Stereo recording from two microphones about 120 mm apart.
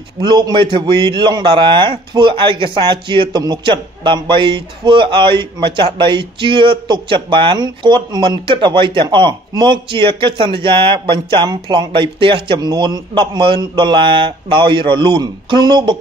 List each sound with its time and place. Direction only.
0.2 s a man's voice: 40° right (ahead or behind)